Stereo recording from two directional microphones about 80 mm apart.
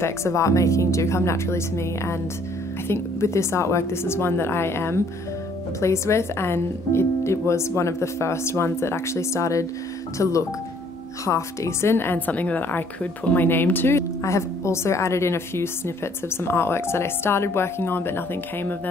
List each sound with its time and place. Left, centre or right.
0.0 s a woman's voice: left